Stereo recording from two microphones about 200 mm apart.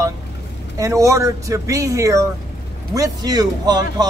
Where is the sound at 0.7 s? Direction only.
15° right (ahead or behind).